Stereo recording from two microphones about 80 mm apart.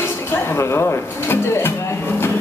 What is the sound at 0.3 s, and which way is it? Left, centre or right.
Speech, left.